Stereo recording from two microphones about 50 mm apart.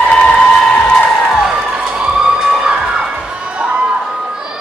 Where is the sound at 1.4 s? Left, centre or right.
Centre.